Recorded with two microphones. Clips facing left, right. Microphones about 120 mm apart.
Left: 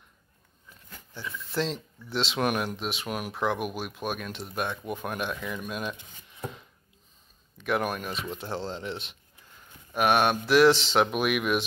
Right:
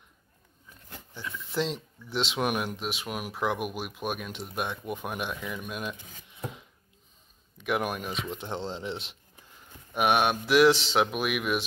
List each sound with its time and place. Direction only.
1.5 s speech: 15° right (ahead or behind)
9.9 s speech: 10° right (ahead or behind)